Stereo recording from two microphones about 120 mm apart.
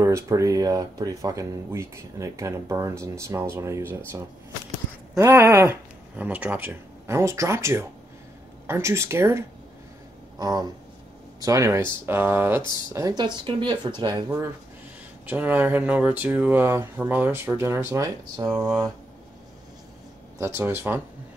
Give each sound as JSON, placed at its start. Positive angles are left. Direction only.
{"t": 0.0, "sound": "speech", "side_deg": -25}
{"t": 5.3, "sound": "speech", "side_deg": -20}
{"t": 10.4, "sound": "speech", "side_deg": -35}
{"t": 12.7, "sound": "speech", "side_deg": -30}
{"t": 15.2, "sound": "speech", "side_deg": -15}
{"t": 20.3, "sound": "speech", "side_deg": -25}